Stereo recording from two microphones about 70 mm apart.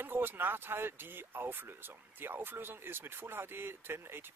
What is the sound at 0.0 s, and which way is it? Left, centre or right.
Speech, right.